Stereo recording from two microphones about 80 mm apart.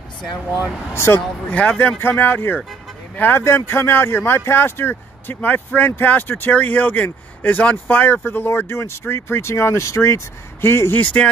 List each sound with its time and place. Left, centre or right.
0.5 s speech: centre
0.9 s speech: left
1.5 s speech: centre
2.0 s speech: left
11.0 s speech: centre